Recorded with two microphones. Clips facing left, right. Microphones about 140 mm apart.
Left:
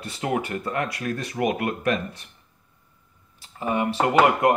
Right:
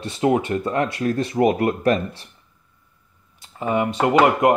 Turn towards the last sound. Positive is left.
turn(degrees=-20)  # may be behind; listen again after turning